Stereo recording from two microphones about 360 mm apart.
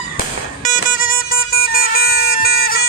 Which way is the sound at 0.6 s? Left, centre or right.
Left.